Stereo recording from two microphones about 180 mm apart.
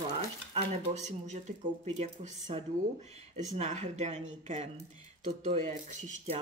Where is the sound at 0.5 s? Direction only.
40° right (ahead or behind).